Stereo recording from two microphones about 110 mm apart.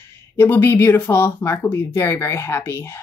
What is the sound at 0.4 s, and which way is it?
Speech, 20° left (ahead or behind).